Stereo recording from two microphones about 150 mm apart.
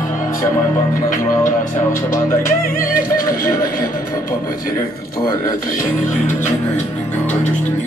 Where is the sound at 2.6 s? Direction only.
70° left (ahead or behind).